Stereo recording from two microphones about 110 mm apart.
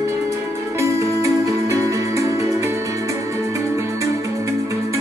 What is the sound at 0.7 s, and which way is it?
Music, 25° right (ahead or behind).